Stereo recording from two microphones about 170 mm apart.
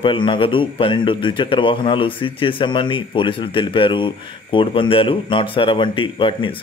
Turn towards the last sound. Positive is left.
turn(degrees=30)  # may be behind; listen again after turning